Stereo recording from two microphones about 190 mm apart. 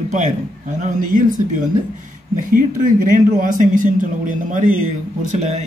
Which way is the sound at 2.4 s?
45° right (ahead or behind).